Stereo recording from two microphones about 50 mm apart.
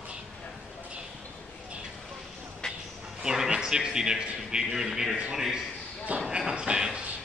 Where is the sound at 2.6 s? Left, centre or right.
Centre.